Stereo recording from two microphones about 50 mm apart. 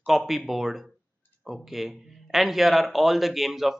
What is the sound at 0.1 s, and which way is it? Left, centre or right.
Speech, centre.